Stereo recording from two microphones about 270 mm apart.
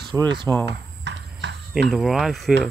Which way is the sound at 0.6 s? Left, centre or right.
Right.